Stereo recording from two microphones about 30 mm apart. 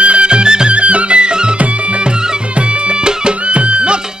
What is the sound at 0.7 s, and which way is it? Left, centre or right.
Music, right.